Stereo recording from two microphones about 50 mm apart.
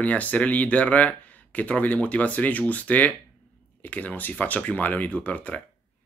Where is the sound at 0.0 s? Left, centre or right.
Left.